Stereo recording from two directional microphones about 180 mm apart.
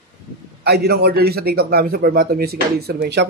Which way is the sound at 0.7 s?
60° right (ahead or behind).